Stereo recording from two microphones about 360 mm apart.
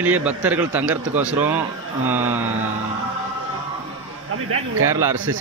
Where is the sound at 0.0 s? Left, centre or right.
Centre.